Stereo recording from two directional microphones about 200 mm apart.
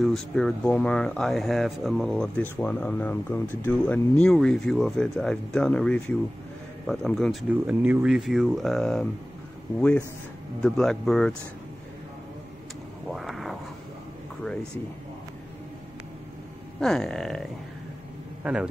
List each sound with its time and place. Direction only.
0.0 s speech: centre (ahead or behind)
7.6 s speech: 10° right (ahead or behind)
13.1 s a sound: centre (ahead or behind)
16.8 s a man's voice: centre (ahead or behind)